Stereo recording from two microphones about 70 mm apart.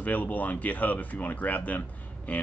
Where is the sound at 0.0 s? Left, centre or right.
Left.